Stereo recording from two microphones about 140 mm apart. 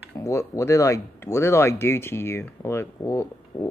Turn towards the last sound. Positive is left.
turn(degrees=20)  # may be behind; listen again after turning